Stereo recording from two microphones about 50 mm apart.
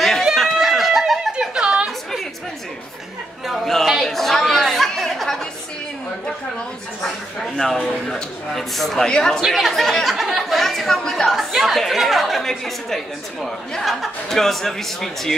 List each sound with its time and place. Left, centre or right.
0.4 s a sound: centre
1.9 s chatter: centre
3.4 s a sound: centre
4.1 s chatter: centre
7.0 s speech: centre
9.5 s a woman's voice: centre
11.2 s a woman's voice: centre